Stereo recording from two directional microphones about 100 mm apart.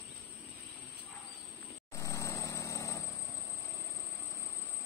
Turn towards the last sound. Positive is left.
turn(degrees=30)  # may be behind; listen again after turning